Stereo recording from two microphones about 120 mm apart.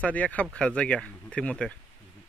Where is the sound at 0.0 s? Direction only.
10° left (ahead or behind).